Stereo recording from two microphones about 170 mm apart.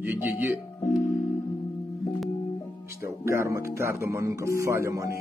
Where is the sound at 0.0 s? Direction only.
10° right (ahead or behind).